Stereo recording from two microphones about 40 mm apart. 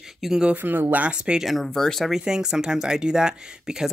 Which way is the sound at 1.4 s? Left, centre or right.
Centre.